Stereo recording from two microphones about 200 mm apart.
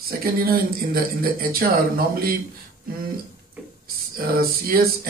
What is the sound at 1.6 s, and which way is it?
Speech, 50° right (ahead or behind).